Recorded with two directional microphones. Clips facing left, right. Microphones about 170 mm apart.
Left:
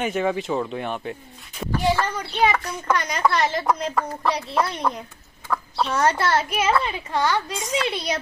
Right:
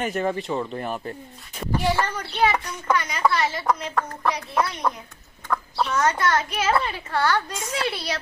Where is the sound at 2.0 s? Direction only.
10° left (ahead or behind).